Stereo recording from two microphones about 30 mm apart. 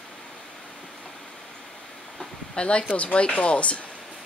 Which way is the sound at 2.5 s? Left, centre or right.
Left.